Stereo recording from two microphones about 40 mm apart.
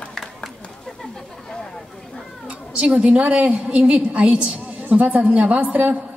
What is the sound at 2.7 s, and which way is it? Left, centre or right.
A man's voice, right.